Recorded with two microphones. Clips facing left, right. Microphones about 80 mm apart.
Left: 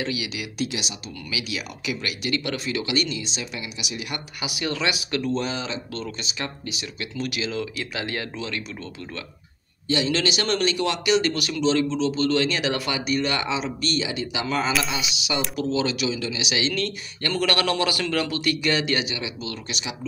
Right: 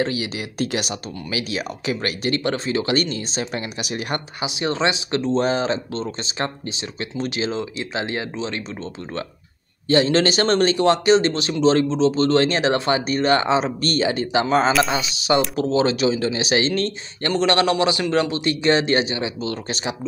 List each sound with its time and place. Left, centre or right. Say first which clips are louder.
0.0 s a man's voice: right 5 dB; right
4.4 s speech: right 4 dB; right
9.8 s a man's voice: right 7 dB; right